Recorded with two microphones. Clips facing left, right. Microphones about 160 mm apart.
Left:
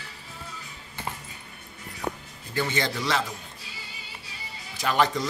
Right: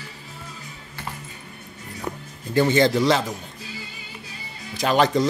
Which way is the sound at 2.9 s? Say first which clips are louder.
Right 8 dB; 35° right (ahead or behind).